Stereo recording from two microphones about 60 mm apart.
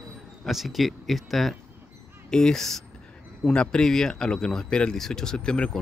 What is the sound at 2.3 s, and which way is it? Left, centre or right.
Speech, centre.